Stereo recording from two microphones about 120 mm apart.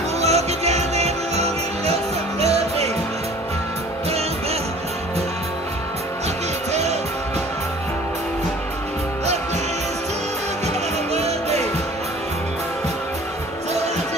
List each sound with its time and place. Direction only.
0.2 s music: 65° right (ahead or behind)
6.7 s music: 65° right (ahead or behind)
11.1 s music: 65° right (ahead or behind)